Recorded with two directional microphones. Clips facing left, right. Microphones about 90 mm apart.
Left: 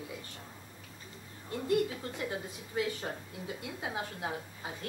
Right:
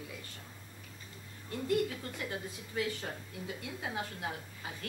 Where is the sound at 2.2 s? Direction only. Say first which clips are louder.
Left 2 dB; 25° left (ahead or behind).